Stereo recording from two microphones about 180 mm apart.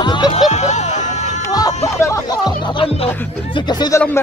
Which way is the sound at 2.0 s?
20° left (ahead or behind).